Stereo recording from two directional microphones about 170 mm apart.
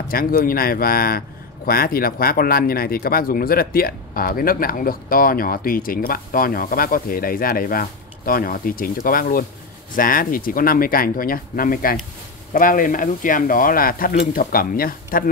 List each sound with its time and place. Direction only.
0.1 s speech: 60° left (ahead or behind)